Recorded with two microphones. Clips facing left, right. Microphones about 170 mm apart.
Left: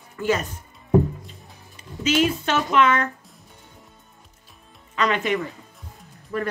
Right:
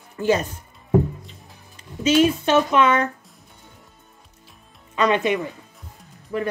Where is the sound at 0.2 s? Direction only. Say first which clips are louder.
Right 3 dB; 30° right (ahead or behind).